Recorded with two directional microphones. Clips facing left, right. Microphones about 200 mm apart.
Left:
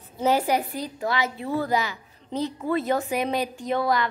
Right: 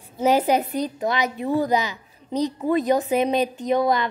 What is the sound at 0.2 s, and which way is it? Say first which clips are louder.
A woman's voice: right 3 dB; 20° right (ahead or behind).